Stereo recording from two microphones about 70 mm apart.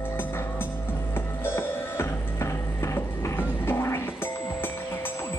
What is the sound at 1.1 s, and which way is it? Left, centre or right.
Music, left.